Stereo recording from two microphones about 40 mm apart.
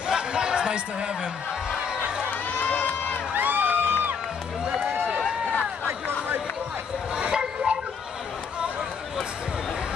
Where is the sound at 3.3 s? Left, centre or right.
Right.